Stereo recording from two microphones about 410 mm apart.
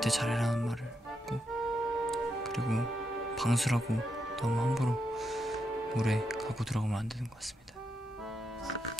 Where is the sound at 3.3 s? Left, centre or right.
Centre.